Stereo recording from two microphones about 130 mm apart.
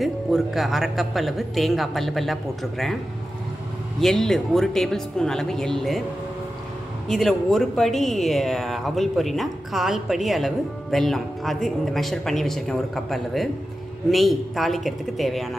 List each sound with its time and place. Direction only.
0.0 s speech: centre (ahead or behind)
4.0 s speech: 5° left (ahead or behind)
7.1 s speech: centre (ahead or behind)